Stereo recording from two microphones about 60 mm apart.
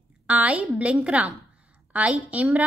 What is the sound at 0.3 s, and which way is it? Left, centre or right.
A woman's voice, right.